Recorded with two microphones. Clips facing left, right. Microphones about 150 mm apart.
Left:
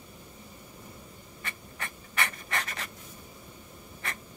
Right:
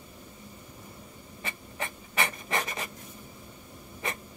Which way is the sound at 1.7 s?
20° right (ahead or behind).